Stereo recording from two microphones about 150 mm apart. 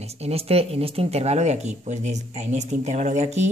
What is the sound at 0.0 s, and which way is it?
Speech, 45° right (ahead or behind).